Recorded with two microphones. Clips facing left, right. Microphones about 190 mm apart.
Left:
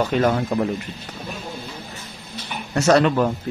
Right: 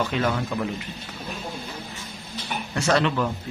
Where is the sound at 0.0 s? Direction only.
40° left (ahead or behind).